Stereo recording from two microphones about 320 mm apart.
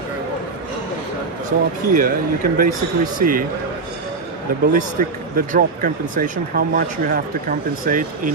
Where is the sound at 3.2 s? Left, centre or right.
Right.